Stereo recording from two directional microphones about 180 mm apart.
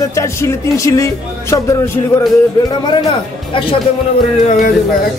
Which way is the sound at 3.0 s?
30° left (ahead or behind).